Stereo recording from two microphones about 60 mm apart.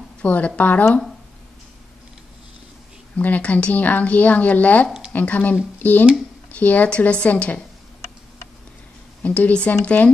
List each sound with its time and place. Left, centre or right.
0.2 s speech: left
3.2 s speech: left
9.2 s speech: left